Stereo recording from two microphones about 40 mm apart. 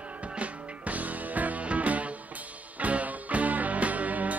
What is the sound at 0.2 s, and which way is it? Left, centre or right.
Music, right.